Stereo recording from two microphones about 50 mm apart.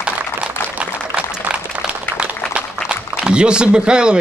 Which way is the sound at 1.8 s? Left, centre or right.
Right.